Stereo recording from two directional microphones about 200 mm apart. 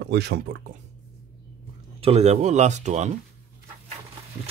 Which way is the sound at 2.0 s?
30° right (ahead or behind).